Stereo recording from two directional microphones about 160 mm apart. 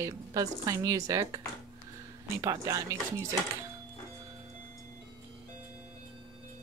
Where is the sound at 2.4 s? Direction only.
20° right (ahead or behind).